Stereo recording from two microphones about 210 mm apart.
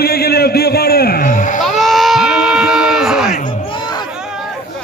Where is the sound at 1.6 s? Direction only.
Centre (ahead or behind).